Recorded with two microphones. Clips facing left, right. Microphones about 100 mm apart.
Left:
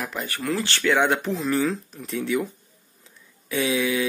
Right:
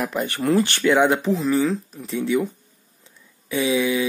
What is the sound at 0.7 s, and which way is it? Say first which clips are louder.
Speech: right 4 dB; 15° right (ahead or behind).